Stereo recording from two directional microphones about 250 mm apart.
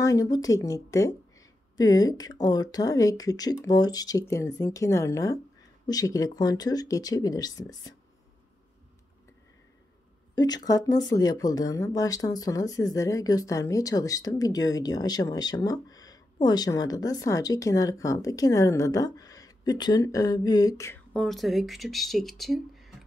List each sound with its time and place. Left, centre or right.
0.0 s speech: centre
10.3 s speech: centre